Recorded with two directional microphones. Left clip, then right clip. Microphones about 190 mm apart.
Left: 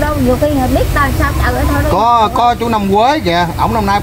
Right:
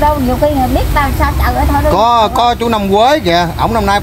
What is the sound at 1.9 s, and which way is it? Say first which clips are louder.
Speech: even; 45° right (ahead or behind).